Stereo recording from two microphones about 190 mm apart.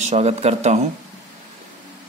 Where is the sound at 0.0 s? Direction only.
35° right (ahead or behind).